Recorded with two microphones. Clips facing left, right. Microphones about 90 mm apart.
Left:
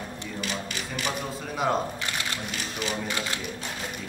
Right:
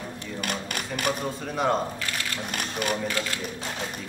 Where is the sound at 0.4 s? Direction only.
55° right (ahead or behind).